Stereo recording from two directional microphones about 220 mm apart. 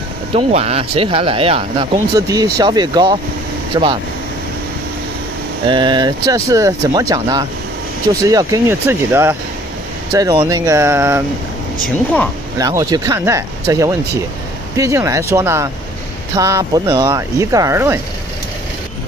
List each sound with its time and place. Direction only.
0.3 s speech: 25° right (ahead or behind)
5.7 s speech: 20° right (ahead or behind)
12.5 s speech: 15° right (ahead or behind)